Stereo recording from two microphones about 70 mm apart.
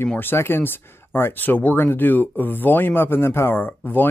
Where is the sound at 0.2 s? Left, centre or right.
Left.